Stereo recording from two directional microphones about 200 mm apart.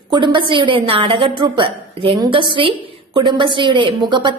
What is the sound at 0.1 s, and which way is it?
A woman's voice, 25° right (ahead or behind).